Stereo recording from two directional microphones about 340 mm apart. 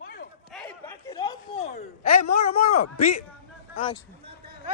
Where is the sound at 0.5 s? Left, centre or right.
Centre.